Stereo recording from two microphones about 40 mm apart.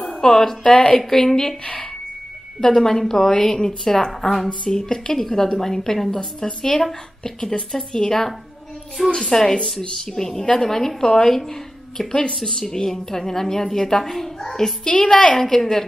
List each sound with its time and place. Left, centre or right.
0.2 s a woman's voice: centre
2.7 s a woman's voice: centre
4.6 s a woman's voice: centre
14.9 s a woman's voice: left
15.4 s a woman's voice: centre